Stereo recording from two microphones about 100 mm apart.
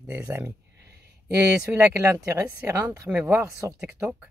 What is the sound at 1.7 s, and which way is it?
Speech, 20° right (ahead or behind).